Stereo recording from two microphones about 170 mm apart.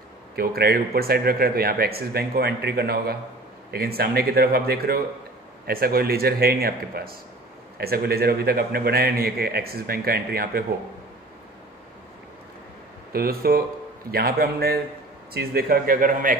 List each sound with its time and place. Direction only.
0.4 s a man's voice: 65° right (ahead or behind)
13.1 s a man's voice: 65° right (ahead or behind)